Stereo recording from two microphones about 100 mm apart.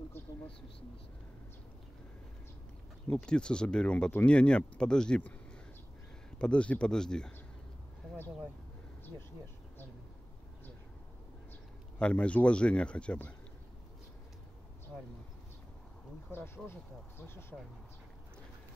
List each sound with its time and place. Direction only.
0.2 s a sound: 25° left (ahead or behind)
3.1 s speech: 10° left (ahead or behind)
6.3 s speech: 10° left (ahead or behind)
12.0 s speech: 10° left (ahead or behind)
17.3 s speech: 25° left (ahead or behind)